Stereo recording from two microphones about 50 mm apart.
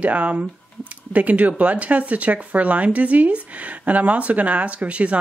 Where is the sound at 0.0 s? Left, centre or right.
Right.